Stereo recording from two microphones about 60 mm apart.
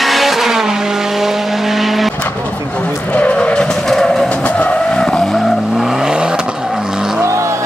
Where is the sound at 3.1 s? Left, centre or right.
Left.